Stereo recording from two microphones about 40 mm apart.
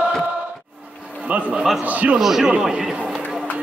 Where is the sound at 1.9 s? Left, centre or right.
Right.